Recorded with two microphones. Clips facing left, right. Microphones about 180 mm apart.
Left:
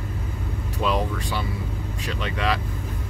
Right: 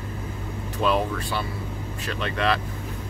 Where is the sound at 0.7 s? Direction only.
15° left (ahead or behind).